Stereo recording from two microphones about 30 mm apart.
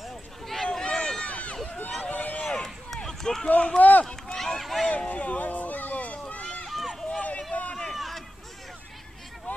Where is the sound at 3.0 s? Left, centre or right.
Left.